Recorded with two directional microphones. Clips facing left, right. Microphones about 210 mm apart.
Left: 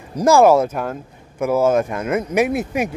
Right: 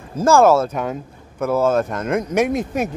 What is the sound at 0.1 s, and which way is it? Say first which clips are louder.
Speech: left 1 dB; 15° left (ahead or behind).